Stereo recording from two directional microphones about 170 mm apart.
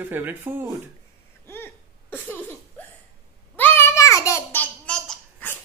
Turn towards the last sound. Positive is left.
turn(degrees=5)  # may be behind; listen again after turning